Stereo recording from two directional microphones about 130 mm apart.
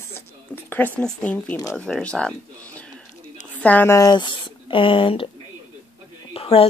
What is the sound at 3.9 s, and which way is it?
Speech, 30° left (ahead or behind).